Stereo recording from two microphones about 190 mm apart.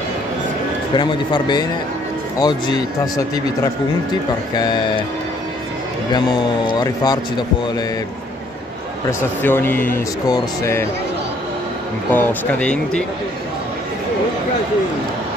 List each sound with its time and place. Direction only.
0.9 s speech: 25° left (ahead or behind)
6.1 s speech: 20° left (ahead or behind)
9.4 s speech: 10° left (ahead or behind)
12.1 s speech: 10° left (ahead or behind)